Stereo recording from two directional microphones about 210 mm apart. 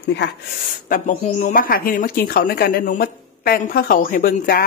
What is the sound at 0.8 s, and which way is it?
Speech, 40° left (ahead or behind).